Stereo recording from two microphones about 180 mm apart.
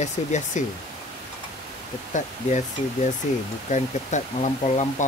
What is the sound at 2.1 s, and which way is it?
Speech, 45° left (ahead or behind).